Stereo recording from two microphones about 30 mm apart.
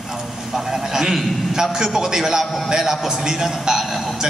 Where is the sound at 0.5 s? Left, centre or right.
Centre.